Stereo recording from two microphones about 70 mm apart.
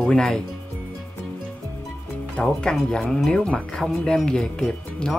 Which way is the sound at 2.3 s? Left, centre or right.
Centre.